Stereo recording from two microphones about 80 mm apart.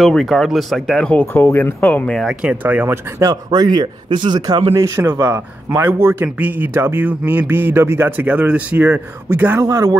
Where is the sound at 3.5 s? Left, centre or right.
Right.